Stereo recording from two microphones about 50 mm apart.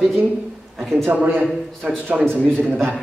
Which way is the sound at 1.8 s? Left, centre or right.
Right.